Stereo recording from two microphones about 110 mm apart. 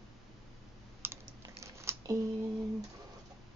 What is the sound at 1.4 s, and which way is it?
Biting, 30° right (ahead or behind).